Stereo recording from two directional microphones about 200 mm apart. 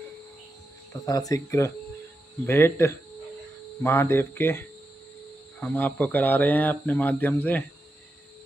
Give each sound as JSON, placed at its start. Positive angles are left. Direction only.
{"t": 1.0, "sound": "speech", "side_deg": 15}